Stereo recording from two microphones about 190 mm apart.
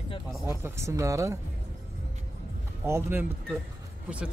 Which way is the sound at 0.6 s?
15° right (ahead or behind).